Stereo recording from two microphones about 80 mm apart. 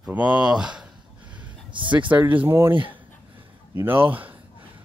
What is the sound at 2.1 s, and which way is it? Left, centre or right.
Speech, right.